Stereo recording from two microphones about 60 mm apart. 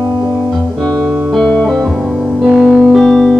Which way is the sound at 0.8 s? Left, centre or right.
Centre.